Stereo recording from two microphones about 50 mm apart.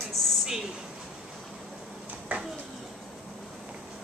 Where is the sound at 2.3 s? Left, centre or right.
Right.